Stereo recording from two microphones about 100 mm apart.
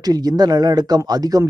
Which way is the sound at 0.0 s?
40° right (ahead or behind).